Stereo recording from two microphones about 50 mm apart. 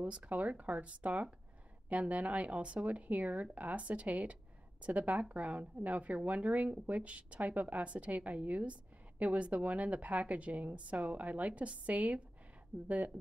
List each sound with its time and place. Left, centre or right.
0.0 s speech: right